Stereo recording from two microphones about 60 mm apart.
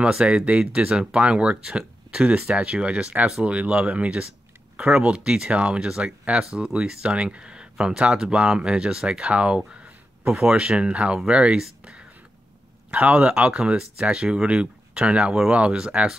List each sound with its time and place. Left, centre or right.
0.0 s speech: centre
12.9 s speech: right